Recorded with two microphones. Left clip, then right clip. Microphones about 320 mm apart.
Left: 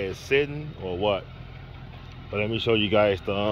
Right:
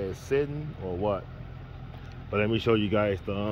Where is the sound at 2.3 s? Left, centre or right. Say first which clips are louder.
Left 1 dB; centre.